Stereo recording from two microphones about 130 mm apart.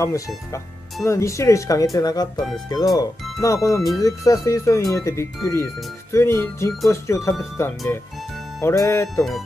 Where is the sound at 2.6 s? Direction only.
30° left (ahead or behind).